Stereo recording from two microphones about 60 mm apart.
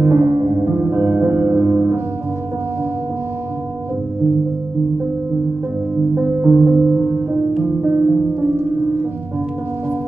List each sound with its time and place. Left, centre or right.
0.0 s music: right
6.1 s music: right